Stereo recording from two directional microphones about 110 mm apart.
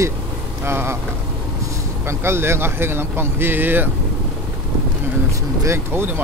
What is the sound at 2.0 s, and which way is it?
Speech, 25° right (ahead or behind).